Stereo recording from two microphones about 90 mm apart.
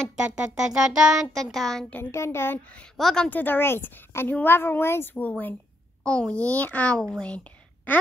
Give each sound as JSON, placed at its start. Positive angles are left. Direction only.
{"t": 0.2, "sound": "a child's voice", "side_deg": -10}
{"t": 1.3, "sound": "a child's voice", "side_deg": 0}
{"t": 1.9, "sound": "a woman's voice", "side_deg": 25}
{"t": 3.0, "sound": "a child's voice", "side_deg": 5}
{"t": 3.3, "sound": "a woman's voice", "side_deg": 20}
{"t": 6.0, "sound": "a child's voice", "side_deg": 10}